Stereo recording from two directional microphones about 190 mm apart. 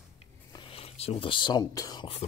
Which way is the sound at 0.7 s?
30° left (ahead or behind).